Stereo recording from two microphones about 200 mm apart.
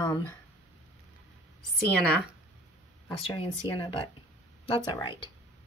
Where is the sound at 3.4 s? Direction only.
25° left (ahead or behind).